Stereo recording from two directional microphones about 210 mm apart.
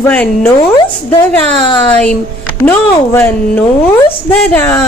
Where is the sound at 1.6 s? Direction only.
20° left (ahead or behind).